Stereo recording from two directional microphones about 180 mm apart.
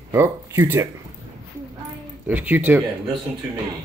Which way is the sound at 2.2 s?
10° right (ahead or behind).